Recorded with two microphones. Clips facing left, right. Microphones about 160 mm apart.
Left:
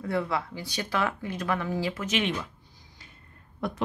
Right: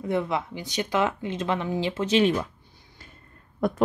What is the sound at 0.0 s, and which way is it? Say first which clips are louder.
Speech: right 3 dB; 20° right (ahead or behind).